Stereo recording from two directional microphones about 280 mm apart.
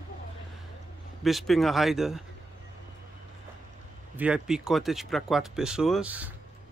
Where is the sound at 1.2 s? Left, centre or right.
Centre.